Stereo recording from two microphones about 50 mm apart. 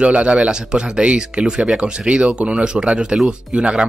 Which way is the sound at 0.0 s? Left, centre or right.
Right.